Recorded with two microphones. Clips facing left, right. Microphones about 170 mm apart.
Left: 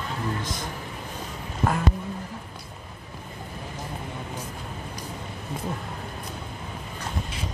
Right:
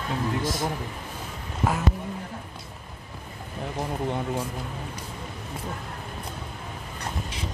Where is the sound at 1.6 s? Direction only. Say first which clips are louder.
Left 1 dB; 10° right (ahead or behind).